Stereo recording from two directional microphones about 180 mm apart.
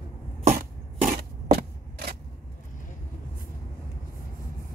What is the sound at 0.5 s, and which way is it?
Scissors, 55° right (ahead or behind).